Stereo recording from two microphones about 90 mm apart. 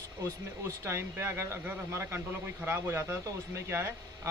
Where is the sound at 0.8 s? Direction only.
30° right (ahead or behind).